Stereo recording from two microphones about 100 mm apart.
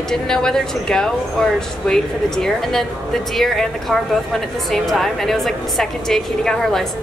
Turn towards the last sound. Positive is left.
turn(degrees=5)  # may be behind; listen again after turning